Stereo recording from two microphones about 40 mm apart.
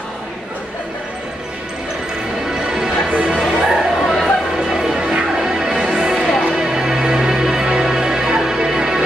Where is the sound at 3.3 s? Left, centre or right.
Centre.